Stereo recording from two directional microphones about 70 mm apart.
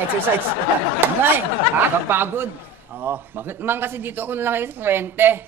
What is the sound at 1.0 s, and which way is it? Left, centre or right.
Speech, right.